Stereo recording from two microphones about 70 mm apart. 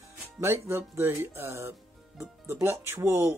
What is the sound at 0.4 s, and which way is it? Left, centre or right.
Speech, right.